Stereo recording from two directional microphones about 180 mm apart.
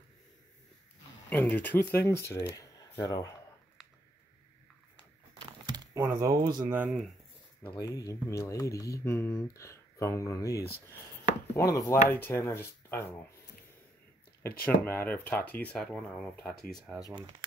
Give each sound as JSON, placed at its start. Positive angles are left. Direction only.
{"t": 1.3, "sound": "speech", "side_deg": 10}
{"t": 5.9, "sound": "speech", "side_deg": -15}
{"t": 6.7, "sound": "speech", "side_deg": -5}
{"t": 7.6, "sound": "speech", "side_deg": 25}
{"t": 14.9, "sound": "speech", "side_deg": 10}